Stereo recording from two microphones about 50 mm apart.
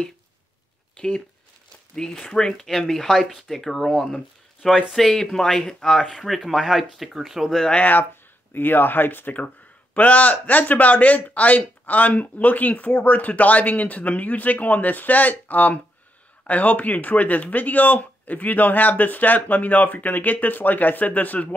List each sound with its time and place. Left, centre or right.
0.9 s speech: centre
6.1 s speech: centre
7.4 s speech: centre
7.7 s speech: left
8.5 s speech: left